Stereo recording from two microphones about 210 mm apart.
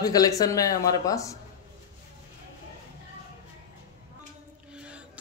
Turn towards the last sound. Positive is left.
turn(degrees=-5)  # may be behind; listen again after turning